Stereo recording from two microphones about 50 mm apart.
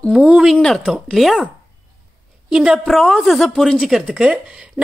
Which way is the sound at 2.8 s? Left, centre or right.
Centre.